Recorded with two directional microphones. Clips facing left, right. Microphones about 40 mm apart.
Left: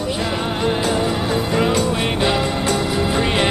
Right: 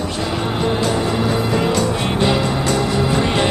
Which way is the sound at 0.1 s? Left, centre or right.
Centre.